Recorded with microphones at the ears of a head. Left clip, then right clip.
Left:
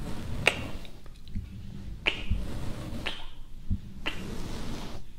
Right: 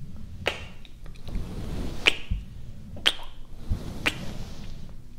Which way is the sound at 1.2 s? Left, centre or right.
Right.